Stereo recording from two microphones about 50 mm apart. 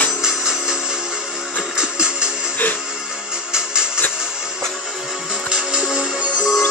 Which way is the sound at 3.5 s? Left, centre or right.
Centre.